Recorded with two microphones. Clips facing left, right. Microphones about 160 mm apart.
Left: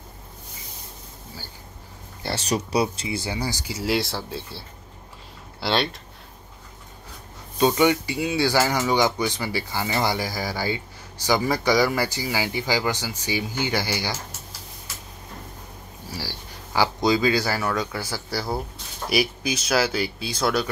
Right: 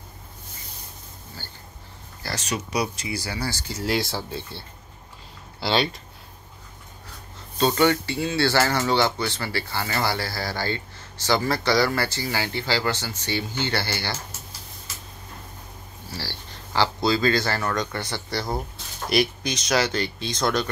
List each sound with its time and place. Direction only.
2.2 s speech: 35° left (ahead or behind); by 5.9 s centre (ahead or behind)
7.5 s speech: 15° left (ahead or behind)
16.1 s speech: 10° left (ahead or behind)